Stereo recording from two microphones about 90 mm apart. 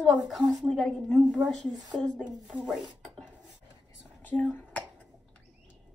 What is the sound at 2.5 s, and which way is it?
Speech, 10° right (ahead or behind).